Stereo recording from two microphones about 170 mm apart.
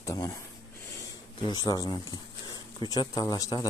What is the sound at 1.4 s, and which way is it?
Speech, 25° left (ahead or behind).